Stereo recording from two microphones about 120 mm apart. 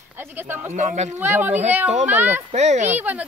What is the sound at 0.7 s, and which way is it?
Speech, 75° right (ahead or behind).